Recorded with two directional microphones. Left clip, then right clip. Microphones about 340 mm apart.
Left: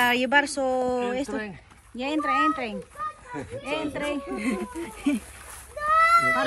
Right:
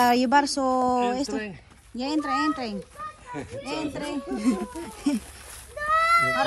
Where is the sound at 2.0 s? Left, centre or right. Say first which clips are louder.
Left 2 dB; centre.